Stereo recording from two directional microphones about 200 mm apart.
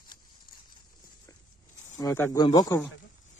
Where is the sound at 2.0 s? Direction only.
15° left (ahead or behind).